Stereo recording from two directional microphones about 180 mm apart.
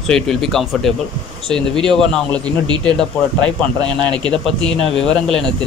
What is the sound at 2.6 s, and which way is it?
Speech, 25° right (ahead or behind).